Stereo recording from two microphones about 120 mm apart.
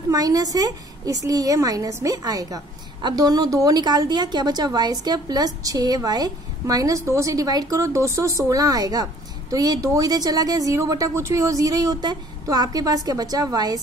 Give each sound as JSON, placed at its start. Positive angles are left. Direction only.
{"t": 0.1, "sound": "a woman's voice", "side_deg": -30}